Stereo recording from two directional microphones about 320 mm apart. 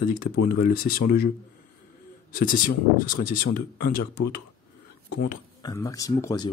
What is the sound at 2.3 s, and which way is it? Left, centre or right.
Speech, left.